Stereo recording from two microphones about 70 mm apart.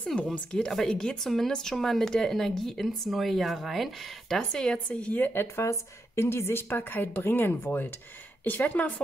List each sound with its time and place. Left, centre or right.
0.0 s speech: centre